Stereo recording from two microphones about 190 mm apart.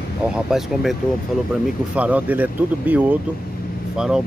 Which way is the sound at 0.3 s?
Centre (ahead or behind).